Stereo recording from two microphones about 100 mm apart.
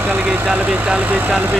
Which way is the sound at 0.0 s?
15° right (ahead or behind).